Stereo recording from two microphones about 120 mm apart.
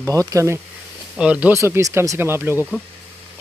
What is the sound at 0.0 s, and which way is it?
Speech, 30° right (ahead or behind).